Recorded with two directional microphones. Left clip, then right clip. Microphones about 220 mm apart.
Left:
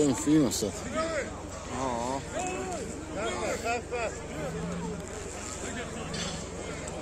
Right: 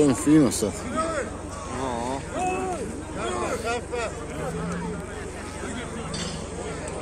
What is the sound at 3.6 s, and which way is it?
Vehicle, 35° left (ahead or behind).